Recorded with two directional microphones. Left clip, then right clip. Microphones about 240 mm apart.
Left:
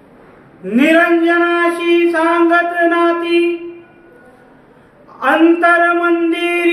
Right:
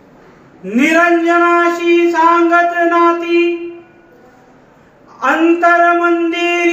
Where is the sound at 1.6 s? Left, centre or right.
Centre.